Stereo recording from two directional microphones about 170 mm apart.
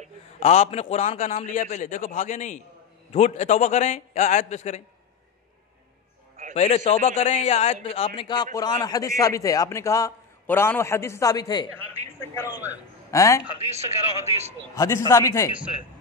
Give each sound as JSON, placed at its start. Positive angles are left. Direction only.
{"t": 0.4, "sound": "a man's voice", "side_deg": 40}
{"t": 6.5, "sound": "a man's voice", "side_deg": 40}
{"t": 12.4, "sound": "a man's voice", "side_deg": -10}
{"t": 13.1, "sound": "a man's voice", "side_deg": 15}
{"t": 13.7, "sound": "a man's voice", "side_deg": -40}
{"t": 14.8, "sound": "a man's voice", "side_deg": 15}